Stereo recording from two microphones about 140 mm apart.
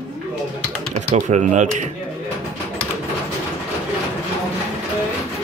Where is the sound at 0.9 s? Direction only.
60° right (ahead or behind).